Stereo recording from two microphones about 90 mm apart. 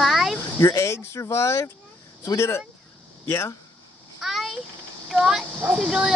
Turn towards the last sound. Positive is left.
turn(degrees=-10)  # may be behind; listen again after turning